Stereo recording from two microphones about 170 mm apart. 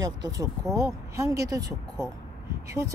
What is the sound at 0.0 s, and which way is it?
Speech, 20° right (ahead or behind).